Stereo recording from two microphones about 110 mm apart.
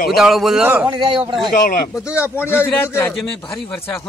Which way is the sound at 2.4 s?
20° left (ahead or behind).